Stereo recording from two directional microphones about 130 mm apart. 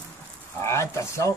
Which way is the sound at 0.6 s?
20° left (ahead or behind).